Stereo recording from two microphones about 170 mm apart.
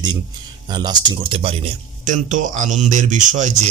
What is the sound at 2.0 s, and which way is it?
Speech, 45° right (ahead or behind).